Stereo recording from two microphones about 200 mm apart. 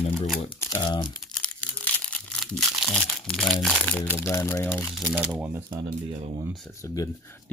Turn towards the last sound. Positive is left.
turn(degrees=15)  # may be behind; listen again after turning